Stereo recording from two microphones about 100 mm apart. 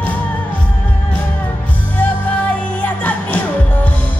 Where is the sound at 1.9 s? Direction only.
15° left (ahead or behind).